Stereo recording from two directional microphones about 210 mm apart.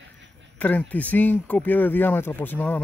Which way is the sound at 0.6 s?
5° left (ahead or behind).